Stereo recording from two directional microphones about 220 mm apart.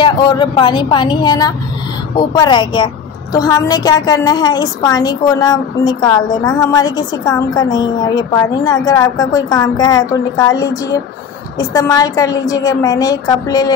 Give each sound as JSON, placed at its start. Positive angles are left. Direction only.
{"t": 0.0, "sound": "a woman's voice", "side_deg": 20}